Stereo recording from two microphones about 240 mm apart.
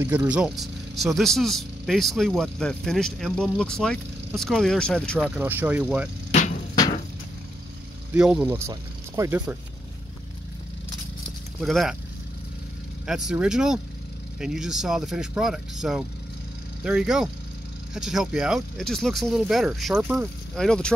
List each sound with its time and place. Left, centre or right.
0.0 s speech: centre
5.4 s speech: centre
6.3 s a sound: left
8.1 s speech: centre
11.6 s speech: centre
13.0 s speech: centre